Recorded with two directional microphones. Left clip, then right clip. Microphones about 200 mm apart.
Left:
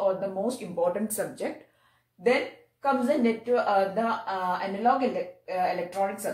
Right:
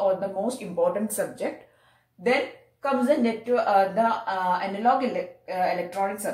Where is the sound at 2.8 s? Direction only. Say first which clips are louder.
Right 2 dB; 10° left (ahead or behind).